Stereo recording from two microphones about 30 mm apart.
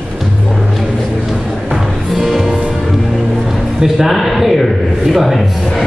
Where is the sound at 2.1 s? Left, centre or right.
Centre.